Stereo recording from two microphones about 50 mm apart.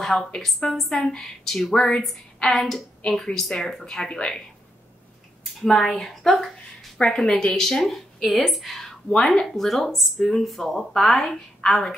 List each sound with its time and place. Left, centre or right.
0.4 s speech: centre
2.5 s a woman's voice: centre
5.4 s a woman's voice: centre